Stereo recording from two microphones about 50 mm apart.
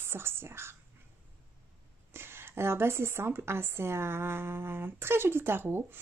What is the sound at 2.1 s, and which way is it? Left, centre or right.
Speech, right.